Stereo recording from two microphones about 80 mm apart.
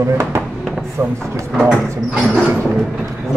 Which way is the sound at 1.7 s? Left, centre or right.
Centre.